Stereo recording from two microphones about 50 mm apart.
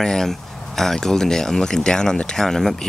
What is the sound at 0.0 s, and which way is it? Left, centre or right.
Speech, centre.